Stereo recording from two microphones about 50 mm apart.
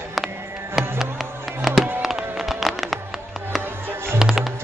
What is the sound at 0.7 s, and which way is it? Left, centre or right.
Music, centre.